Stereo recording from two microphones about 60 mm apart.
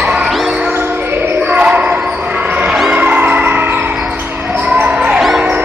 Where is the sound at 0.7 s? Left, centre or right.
Right.